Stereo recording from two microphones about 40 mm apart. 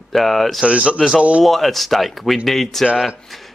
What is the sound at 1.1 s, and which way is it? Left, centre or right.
Speech, right.